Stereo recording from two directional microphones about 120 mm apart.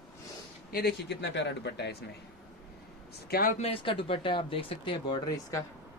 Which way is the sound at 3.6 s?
50° left (ahead or behind).